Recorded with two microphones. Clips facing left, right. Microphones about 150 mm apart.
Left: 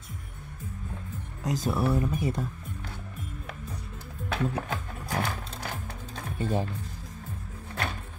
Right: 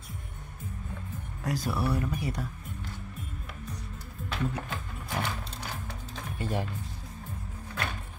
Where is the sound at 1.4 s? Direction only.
20° left (ahead or behind).